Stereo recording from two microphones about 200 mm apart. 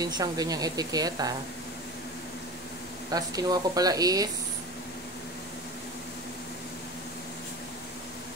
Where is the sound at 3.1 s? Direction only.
20° right (ahead or behind).